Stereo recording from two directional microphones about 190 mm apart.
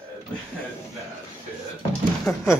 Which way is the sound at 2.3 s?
5° left (ahead or behind).